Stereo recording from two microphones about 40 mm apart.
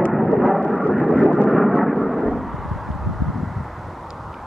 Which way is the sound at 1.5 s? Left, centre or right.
Centre.